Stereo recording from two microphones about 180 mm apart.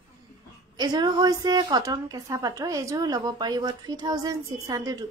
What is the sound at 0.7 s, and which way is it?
A woman's voice, 25° right (ahead or behind).